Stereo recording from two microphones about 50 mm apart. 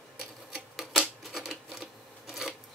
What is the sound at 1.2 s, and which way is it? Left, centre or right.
Sewing machine, centre.